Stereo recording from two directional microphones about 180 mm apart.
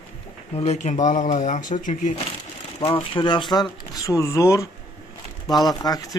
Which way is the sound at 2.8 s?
30° left (ahead or behind).